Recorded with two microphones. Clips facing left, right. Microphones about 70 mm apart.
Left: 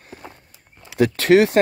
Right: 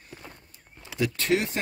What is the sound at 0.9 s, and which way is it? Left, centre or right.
Speech, left.